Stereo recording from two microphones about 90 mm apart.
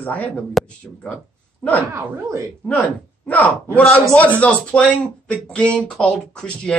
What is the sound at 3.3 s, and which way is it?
Speech, 15° left (ahead or behind).